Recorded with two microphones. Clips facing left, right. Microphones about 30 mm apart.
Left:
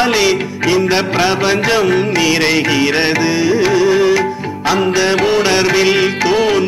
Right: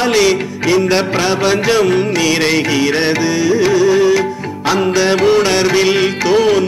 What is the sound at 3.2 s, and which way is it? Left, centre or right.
Music, left.